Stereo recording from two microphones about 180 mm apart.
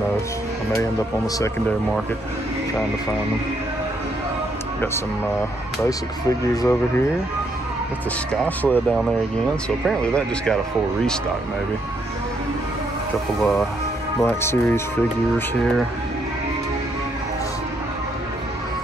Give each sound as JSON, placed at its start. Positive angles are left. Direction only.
{"t": 5.9, "sound": "speech", "side_deg": 20}
{"t": 8.3, "sound": "speech", "side_deg": 10}
{"t": 13.4, "sound": "speech", "side_deg": 0}